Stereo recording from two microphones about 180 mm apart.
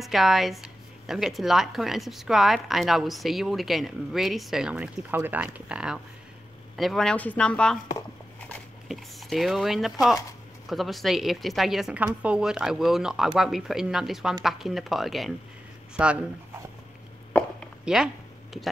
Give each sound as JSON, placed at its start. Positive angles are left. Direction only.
{"t": 0.0, "sound": "speech", "side_deg": 0}
{"t": 8.8, "sound": "speech", "side_deg": 0}
{"t": 17.3, "sound": "chopping", "side_deg": 10}
{"t": 17.8, "sound": "a sound", "side_deg": -5}